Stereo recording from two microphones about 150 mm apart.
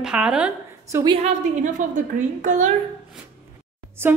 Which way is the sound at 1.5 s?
55° right (ahead or behind).